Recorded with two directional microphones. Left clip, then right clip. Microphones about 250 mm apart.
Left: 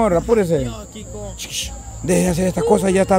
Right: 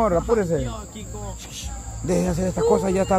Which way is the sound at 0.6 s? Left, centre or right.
Left.